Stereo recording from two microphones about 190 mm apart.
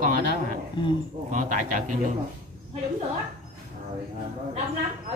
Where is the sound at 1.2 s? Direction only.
40° right (ahead or behind).